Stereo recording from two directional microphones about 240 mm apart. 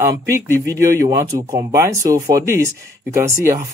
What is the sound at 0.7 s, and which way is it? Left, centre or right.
Speech, centre.